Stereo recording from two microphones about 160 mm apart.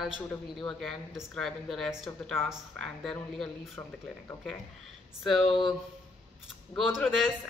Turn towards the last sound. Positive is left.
turn(degrees=-5)  # may be behind; listen again after turning